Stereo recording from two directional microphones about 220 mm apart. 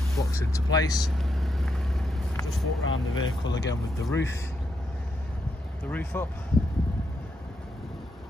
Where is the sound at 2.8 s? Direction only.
65° left (ahead or behind).